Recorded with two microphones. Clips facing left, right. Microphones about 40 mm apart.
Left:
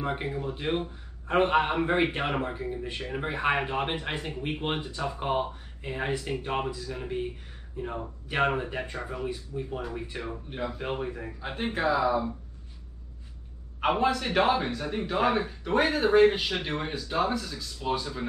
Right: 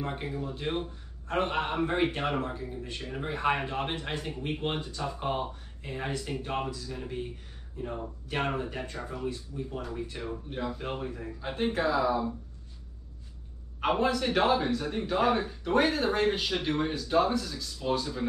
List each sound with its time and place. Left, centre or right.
0.0 s a man's voice: left
11.4 s a man's voice: centre
13.7 s a man's voice: centre